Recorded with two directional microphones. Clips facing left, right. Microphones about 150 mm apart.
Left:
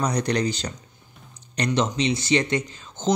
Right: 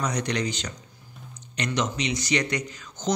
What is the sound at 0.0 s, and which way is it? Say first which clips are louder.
Speech: left 4 dB; 35° left (ahead or behind).